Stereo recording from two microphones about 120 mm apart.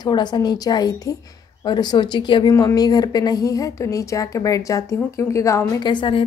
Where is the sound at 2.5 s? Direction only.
30° left (ahead or behind).